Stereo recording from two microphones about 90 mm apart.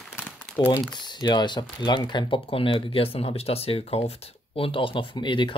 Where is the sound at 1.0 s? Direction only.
55° left (ahead or behind).